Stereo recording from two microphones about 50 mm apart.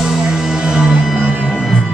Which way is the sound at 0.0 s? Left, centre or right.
Centre.